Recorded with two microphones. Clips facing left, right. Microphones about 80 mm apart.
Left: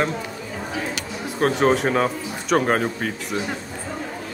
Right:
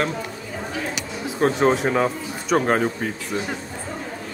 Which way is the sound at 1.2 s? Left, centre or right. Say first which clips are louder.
Even; centre.